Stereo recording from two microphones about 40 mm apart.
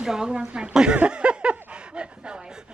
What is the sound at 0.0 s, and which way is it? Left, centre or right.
Speech, centre.